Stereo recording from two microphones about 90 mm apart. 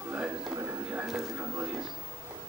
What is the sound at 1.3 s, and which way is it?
Music, 25° right (ahead or behind).